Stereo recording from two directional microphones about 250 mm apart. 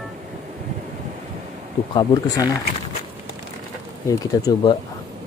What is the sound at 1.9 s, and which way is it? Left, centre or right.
Speech, centre.